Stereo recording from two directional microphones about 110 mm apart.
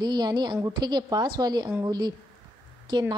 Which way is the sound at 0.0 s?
40° right (ahead or behind).